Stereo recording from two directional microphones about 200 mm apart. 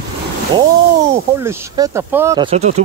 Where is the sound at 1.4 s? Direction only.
15° right (ahead or behind).